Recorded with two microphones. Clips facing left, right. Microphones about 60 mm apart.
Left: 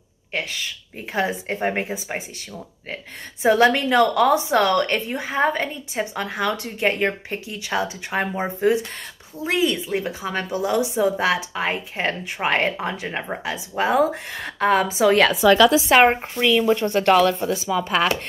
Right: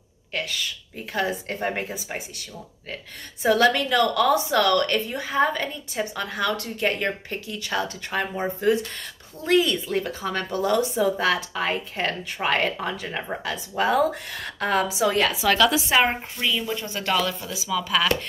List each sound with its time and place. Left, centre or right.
0.3 s a woman's voice: left
3.4 s a woman's voice: left
15.9 s speech: left
16.3 s speech: left